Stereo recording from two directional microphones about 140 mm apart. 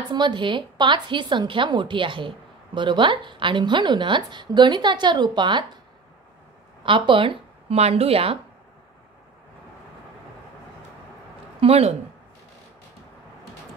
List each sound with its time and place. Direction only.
0.1 s a woman's voice: 35° right (ahead or behind)
6.8 s speech: 35° right (ahead or behind)
11.6 s a woman's voice: 45° right (ahead or behind)